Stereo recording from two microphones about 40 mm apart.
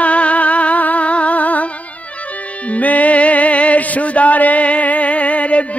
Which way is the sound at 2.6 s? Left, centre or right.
Left.